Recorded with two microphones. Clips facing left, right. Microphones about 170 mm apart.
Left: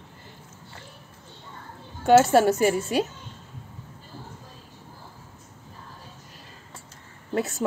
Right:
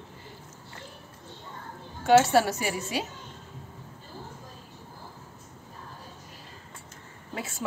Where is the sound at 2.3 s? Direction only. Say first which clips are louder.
Left 5 dB; 50° left (ahead or behind).